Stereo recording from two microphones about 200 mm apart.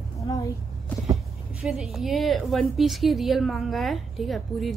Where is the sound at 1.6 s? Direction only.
Centre (ahead or behind).